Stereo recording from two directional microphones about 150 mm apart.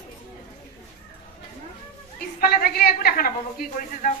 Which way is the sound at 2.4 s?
85° left.